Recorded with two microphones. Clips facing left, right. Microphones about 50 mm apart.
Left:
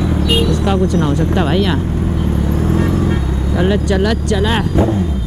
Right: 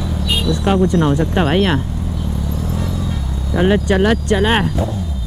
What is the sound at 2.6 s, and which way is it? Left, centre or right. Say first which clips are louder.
Vehicle: left 10 dB; left.